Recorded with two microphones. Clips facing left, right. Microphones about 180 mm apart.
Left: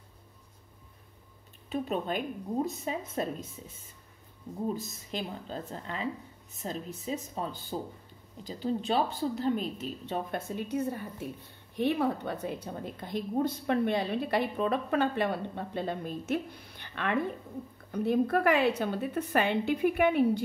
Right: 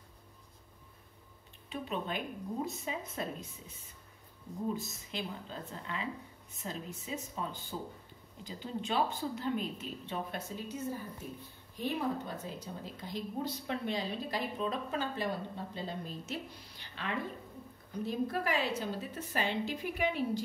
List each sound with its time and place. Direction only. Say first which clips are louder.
1.7 s speech: left 6 dB; 40° left (ahead or behind)
5.1 s speech: left 5 dB; 40° left (ahead or behind)
10.5 s a woman's voice: left 9 dB; 60° left (ahead or behind)